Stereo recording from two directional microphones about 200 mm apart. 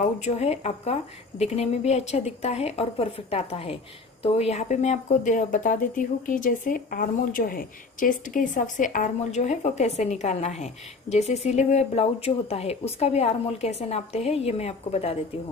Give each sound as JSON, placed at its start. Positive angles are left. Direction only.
{"t": 0.0, "sound": "speech", "side_deg": 35}